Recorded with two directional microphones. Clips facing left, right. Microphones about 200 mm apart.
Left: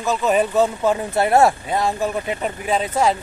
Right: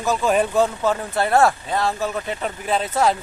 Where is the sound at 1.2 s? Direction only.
20° left (ahead or behind).